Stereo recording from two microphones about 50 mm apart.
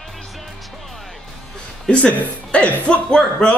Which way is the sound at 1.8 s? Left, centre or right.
Left.